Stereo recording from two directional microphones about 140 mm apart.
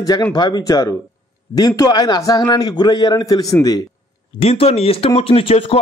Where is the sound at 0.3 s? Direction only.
30° left (ahead or behind).